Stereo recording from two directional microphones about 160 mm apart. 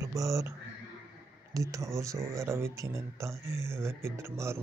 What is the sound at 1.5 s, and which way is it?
Speech, 20° right (ahead or behind).